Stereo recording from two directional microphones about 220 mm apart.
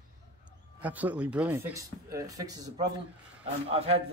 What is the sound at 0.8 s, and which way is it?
A man's voice, 5° right (ahead or behind).